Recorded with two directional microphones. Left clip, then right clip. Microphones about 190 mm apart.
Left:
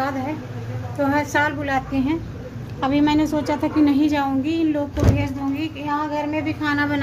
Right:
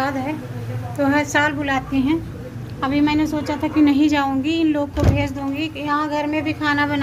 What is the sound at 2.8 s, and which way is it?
Speech, 30° left (ahead or behind).